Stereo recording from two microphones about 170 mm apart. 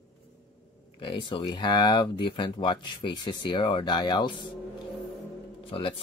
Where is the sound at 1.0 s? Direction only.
30° left (ahead or behind).